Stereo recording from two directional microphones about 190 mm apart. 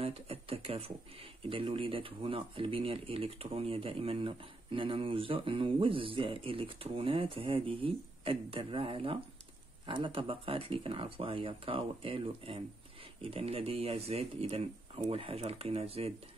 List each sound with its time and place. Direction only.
0.0 s speech: 30° right (ahead or behind)